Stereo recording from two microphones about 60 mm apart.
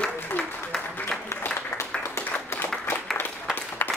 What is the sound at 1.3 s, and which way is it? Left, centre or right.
Applause, left.